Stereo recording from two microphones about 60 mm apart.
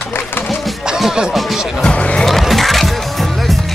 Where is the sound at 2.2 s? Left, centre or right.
Centre.